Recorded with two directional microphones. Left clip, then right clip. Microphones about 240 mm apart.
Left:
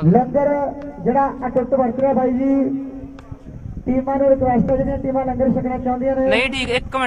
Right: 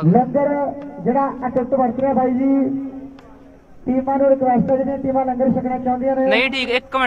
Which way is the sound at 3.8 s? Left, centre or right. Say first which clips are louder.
Even; left.